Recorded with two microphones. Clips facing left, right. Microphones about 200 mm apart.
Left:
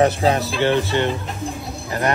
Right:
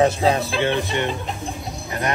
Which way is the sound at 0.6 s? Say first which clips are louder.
Left 3 dB; 15° right (ahead or behind).